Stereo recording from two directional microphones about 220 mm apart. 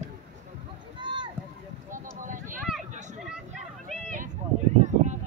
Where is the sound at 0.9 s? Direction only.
20° right (ahead or behind).